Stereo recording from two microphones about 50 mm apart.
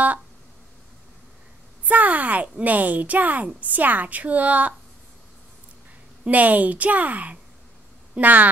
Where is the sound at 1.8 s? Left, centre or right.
Right.